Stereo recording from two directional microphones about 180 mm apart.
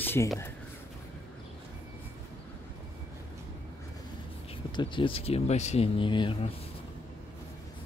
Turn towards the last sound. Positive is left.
turn(degrees=30)  # may be behind; listen again after turning